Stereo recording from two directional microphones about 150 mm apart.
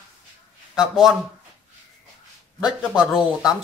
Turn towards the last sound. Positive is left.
turn(degrees=-5)  # may be behind; listen again after turning